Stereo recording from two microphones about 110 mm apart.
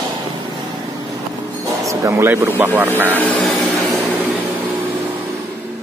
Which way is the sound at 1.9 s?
25° right (ahead or behind).